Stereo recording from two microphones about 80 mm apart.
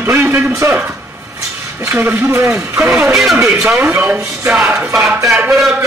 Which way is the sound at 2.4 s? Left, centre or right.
Right.